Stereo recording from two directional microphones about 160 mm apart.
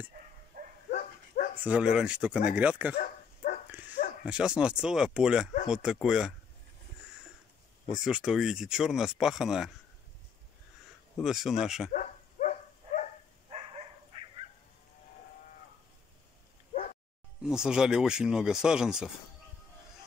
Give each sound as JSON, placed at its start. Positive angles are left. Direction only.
{"t": 0.5, "sound": "dog", "side_deg": -70}
{"t": 0.9, "sound": "dog", "side_deg": 55}
{"t": 1.6, "sound": "speech", "side_deg": -5}
{"t": 4.2, "sound": "speech", "side_deg": -5}
{"t": 7.9, "sound": "speech", "side_deg": -5}
{"t": 11.1, "sound": "speech", "side_deg": 0}
{"t": 11.9, "sound": "dog", "side_deg": 55}
{"t": 13.5, "sound": "dog", "side_deg": -40}
{"t": 17.4, "sound": "speech", "side_deg": -5}